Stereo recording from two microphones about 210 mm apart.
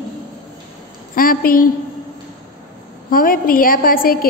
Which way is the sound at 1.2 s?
45° left (ahead or behind).